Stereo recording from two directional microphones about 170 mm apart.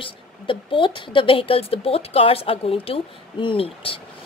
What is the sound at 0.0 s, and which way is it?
A woman's voice, 30° left (ahead or behind).